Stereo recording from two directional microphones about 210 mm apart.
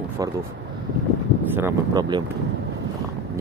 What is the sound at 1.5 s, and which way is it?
Speech, 15° right (ahead or behind).